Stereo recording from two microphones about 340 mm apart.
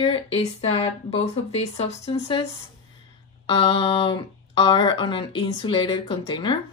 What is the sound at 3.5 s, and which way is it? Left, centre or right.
Speech, centre.